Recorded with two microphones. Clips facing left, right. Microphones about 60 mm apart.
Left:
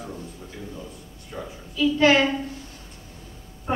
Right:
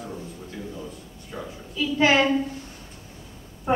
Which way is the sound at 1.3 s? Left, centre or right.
Centre.